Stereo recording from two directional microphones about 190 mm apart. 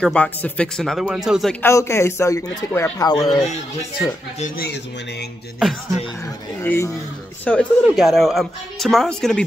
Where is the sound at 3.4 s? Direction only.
35° left (ahead or behind).